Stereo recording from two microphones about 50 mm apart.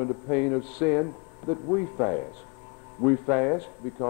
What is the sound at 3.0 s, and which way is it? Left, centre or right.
Speech, centre.